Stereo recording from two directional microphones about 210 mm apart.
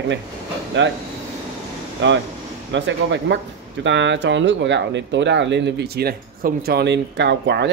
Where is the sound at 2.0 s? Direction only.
60° right (ahead or behind).